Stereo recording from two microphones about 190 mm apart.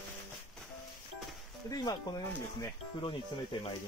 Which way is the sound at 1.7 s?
20° left (ahead or behind).